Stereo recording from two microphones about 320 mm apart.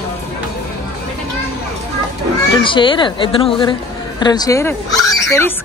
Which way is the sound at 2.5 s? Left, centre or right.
Centre.